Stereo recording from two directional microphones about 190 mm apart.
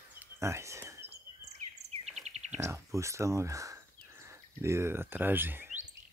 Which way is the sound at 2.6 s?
15° right (ahead or behind).